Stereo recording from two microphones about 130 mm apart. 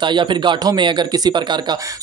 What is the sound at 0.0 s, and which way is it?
Speech, 35° right (ahead or behind).